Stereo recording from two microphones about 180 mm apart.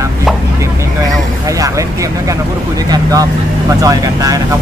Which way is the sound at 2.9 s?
20° right (ahead or behind).